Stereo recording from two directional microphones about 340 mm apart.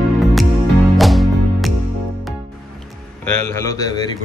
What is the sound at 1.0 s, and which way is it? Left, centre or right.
Music, centre.